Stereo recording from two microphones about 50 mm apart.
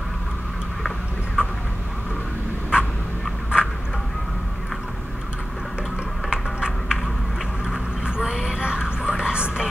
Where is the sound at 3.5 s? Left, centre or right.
Centre.